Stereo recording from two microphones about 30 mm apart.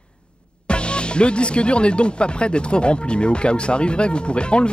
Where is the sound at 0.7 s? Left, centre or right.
Left.